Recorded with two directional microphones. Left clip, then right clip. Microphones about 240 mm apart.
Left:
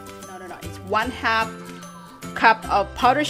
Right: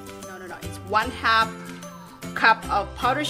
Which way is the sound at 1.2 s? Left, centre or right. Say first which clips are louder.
Right 1 dB; centre.